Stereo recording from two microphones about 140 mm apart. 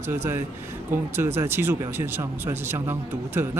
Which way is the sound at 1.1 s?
15° right (ahead or behind).